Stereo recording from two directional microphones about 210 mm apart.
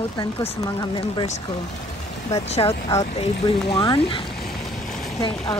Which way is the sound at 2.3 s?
30° left (ahead or behind).